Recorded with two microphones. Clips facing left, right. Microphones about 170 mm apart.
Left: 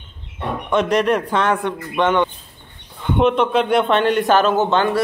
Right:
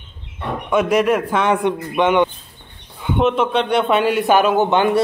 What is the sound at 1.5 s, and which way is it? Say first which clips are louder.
Speech: right 3 dB; 20° right (ahead or behind).